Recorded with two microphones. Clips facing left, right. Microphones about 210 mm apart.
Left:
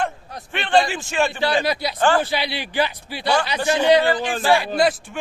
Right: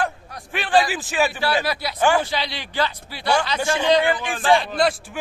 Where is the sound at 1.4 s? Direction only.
20° left (ahead or behind).